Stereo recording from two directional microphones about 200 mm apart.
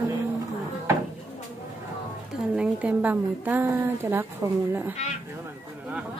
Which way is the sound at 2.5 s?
5° right (ahead or behind).